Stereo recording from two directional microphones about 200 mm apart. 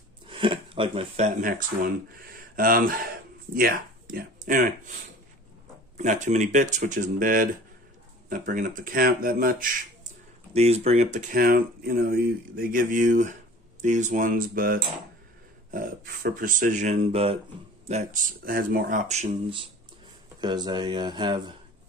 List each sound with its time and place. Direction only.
0.3 s speech: 25° right (ahead or behind)
2.1 s speech: 45° right (ahead or behind)
5.9 s speech: 35° right (ahead or behind)
10.5 s speech: 30° right (ahead or behind)